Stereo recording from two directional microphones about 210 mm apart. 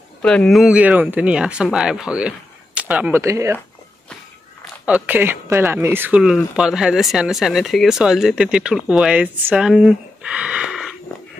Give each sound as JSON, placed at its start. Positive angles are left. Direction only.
{"t": 0.2, "sound": "speech", "side_deg": 5}
{"t": 4.8, "sound": "speech", "side_deg": -5}